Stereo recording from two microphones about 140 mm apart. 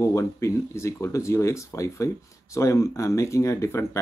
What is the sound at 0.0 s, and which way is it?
Speech, 20° left (ahead or behind).